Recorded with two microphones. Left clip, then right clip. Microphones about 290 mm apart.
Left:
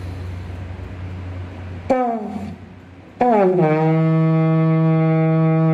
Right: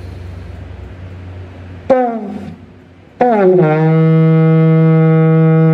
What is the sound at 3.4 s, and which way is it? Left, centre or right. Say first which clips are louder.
Music: right 5 dB; right.